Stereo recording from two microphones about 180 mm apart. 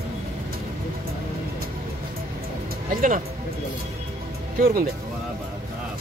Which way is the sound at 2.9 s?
45° right (ahead or behind).